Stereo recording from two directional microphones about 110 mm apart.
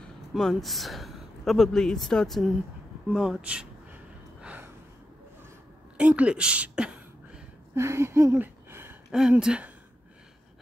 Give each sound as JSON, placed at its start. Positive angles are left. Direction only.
{"t": 0.3, "sound": "speech", "side_deg": 0}
{"t": 4.4, "sound": "gasp", "side_deg": -10}
{"t": 5.9, "sound": "a sound", "side_deg": -10}
{"t": 7.7, "sound": "speech", "side_deg": -25}
{"t": 9.4, "sound": "speech", "side_deg": -10}